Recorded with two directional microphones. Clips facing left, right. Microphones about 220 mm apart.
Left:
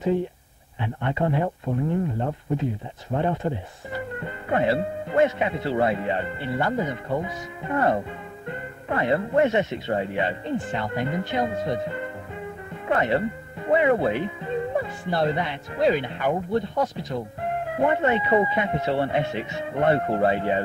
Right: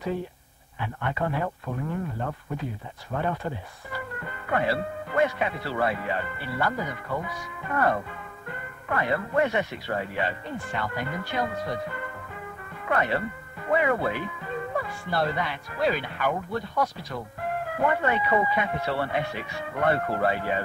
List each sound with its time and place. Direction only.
0.7 s speech: 25° left (ahead or behind)